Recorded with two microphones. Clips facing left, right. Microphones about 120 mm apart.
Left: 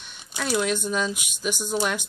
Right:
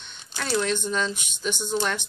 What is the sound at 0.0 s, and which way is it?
Speech, 10° left (ahead or behind).